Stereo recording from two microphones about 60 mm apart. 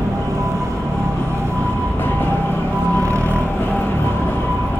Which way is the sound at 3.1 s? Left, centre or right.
Right.